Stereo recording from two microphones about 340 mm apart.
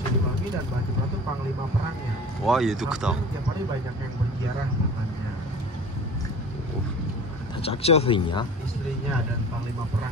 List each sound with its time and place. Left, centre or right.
2.4 s speech: centre
7.6 s speech: centre